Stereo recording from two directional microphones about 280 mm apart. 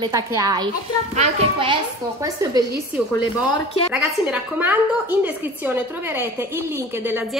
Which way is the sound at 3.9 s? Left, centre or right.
Centre.